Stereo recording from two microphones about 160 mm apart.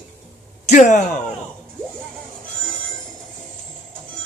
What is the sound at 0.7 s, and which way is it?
Speech, 50° left (ahead or behind).